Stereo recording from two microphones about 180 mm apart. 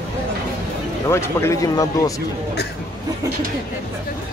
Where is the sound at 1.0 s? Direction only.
15° left (ahead or behind).